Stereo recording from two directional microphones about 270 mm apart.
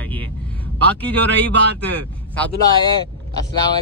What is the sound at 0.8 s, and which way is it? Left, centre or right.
Speech, centre.